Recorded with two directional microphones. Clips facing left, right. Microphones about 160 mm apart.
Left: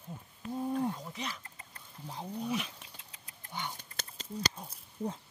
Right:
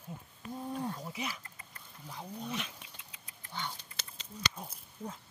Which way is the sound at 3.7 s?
45° left (ahead or behind).